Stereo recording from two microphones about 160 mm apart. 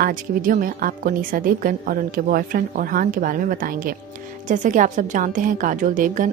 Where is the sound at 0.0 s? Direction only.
60° right (ahead or behind).